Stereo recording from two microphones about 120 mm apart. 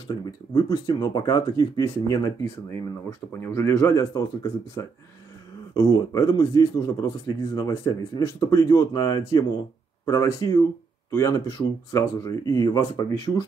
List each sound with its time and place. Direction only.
0.6 s speech: 35° left (ahead or behind)